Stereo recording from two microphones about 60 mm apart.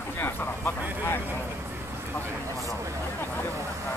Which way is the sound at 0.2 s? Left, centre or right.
Left.